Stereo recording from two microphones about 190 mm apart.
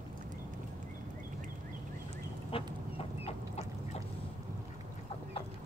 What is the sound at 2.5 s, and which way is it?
Duck, 30° left (ahead or behind).